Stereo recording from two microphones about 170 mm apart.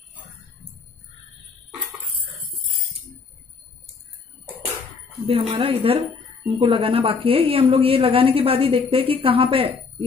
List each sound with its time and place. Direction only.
5.5 s speech: 35° right (ahead or behind)